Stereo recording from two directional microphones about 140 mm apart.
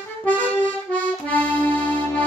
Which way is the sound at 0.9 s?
10° left (ahead or behind).